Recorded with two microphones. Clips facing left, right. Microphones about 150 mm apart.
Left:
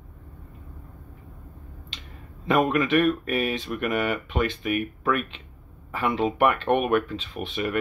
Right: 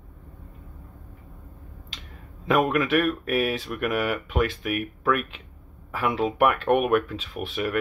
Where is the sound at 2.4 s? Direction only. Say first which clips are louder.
Even; 5° right (ahead or behind).